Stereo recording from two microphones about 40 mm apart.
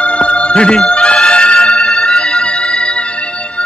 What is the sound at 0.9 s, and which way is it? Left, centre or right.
Music, left.